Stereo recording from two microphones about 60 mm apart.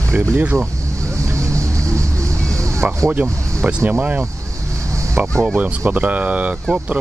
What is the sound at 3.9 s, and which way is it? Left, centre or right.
Speech, right.